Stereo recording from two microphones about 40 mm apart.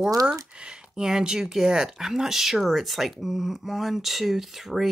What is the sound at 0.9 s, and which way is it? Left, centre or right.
Speech, centre.